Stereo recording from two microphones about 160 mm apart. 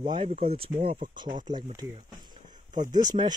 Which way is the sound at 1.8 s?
25° right (ahead or behind).